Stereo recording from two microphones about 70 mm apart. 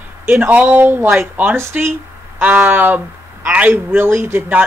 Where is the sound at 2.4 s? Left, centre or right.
Right.